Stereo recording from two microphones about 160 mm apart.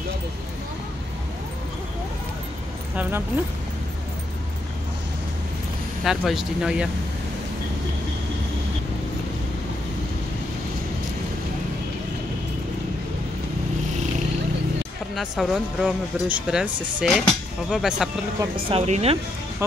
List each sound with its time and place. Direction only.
3.0 s speech: 15° right (ahead or behind)
6.0 s speech: centre (ahead or behind)
15.1 s speech: centre (ahead or behind)
18.7 s speech: 40° right (ahead or behind)